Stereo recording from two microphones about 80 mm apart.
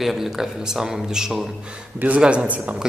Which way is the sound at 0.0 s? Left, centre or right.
Centre.